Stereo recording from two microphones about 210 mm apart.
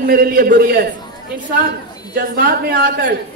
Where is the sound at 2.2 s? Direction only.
45° right (ahead or behind).